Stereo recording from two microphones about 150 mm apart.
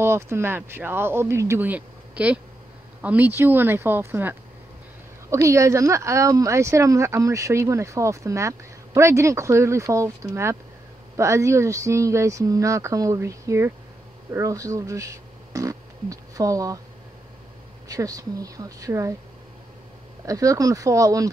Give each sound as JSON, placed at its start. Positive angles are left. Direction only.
{"t": 0.0, "sound": "speech", "side_deg": -15}
{"t": 17.8, "sound": "speech", "side_deg": -25}
{"t": 20.2, "sound": "speech", "side_deg": -20}